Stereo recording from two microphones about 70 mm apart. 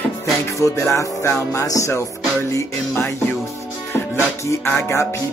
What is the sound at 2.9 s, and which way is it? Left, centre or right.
Speech, left.